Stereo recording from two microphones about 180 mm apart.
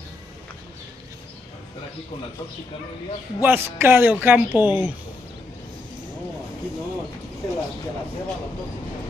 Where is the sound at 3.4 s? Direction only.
10° right (ahead or behind).